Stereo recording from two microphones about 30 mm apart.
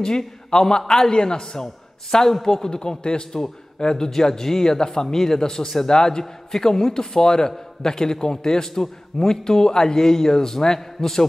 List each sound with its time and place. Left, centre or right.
0.5 s a man's voice: left
2.7 s a man's voice: left